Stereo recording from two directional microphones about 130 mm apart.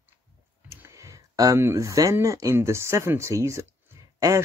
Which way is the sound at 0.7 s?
20° right (ahead or behind).